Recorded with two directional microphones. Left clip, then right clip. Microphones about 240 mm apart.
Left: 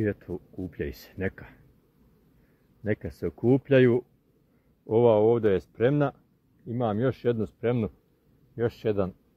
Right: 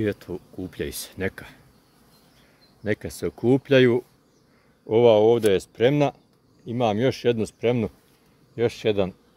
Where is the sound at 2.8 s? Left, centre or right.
Centre.